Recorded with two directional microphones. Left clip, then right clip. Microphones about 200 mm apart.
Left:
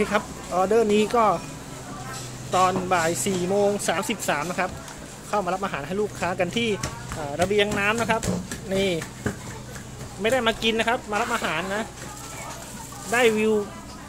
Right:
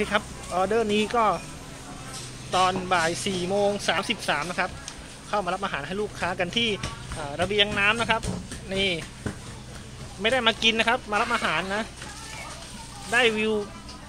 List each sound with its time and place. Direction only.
0.0 s speech: centre (ahead or behind)
2.5 s speech: centre (ahead or behind)
8.6 s speech: 15° left (ahead or behind)
10.2 s speech: 5° right (ahead or behind); by 11.8 s 30° right (ahead or behind)
13.1 s speech: 5° left (ahead or behind)